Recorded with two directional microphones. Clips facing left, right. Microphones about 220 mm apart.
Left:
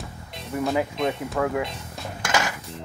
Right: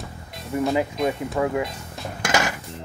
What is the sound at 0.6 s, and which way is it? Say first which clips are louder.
Speech: right 1 dB; 5° right (ahead or behind).